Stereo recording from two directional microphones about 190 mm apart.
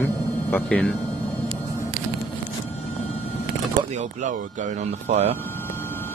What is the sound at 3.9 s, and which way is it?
Speech, 40° right (ahead or behind).